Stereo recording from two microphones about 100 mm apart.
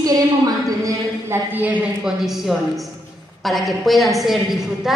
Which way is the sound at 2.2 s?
Centre (ahead or behind).